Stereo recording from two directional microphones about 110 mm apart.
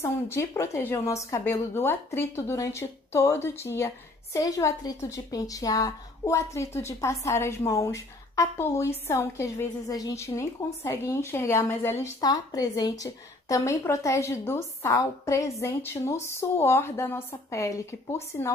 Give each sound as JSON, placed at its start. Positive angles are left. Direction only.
{"t": 0.0, "sound": "a woman's voice", "side_deg": 25}
{"t": 9.8, "sound": "a woman's voice", "side_deg": 30}
{"t": 12.2, "sound": "a woman's voice", "side_deg": 35}